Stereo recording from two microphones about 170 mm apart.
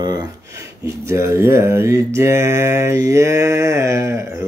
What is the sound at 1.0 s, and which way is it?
Mantra, 15° right (ahead or behind).